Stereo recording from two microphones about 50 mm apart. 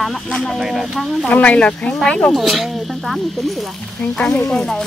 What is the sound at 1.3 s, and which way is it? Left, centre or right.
Speech, left.